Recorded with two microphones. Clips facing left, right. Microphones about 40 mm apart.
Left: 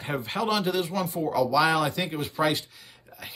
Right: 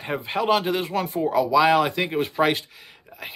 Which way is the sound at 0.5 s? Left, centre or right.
Right.